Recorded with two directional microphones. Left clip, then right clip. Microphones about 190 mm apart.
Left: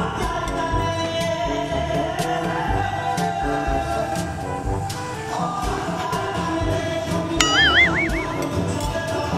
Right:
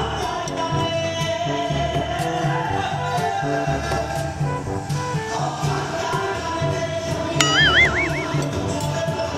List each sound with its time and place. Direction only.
7.3 s music: centre (ahead or behind)